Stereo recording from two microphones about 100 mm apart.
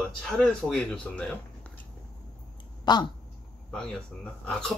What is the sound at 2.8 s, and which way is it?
Speech, 45° left (ahead or behind).